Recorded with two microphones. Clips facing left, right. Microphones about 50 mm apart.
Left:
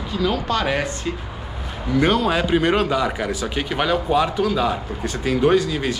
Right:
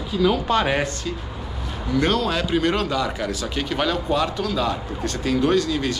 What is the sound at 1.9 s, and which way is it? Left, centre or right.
A man's voice, centre.